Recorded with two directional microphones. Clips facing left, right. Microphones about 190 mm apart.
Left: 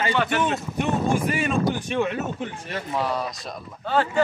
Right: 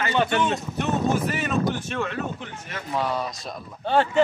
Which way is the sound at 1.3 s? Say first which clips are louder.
Left 2 dB; 10° left (ahead or behind).